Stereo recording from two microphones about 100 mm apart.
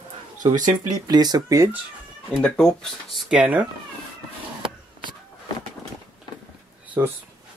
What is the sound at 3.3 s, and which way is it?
Speech, 15° right (ahead or behind).